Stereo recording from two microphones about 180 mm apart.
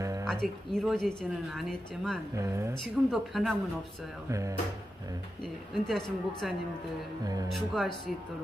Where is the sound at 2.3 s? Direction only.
15° right (ahead or behind).